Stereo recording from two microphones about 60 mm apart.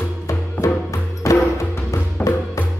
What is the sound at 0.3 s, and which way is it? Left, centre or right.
Music, left.